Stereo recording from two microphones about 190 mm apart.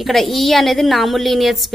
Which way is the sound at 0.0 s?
Centre (ahead or behind).